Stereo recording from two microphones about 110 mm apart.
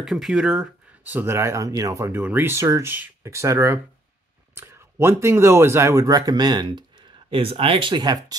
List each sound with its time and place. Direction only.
0.0 s speech: 5° right (ahead or behind)
1.0 s speech: 20° right (ahead or behind)
2.1 s speech: 15° right (ahead or behind); by 6.8 s 45° right (ahead or behind)
7.2 s speech: 55° right (ahead or behind); by 8.4 s 40° right (ahead or behind)